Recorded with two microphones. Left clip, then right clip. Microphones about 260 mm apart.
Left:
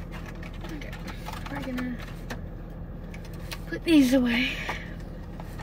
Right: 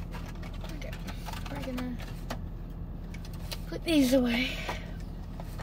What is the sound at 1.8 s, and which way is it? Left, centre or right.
Speech, centre.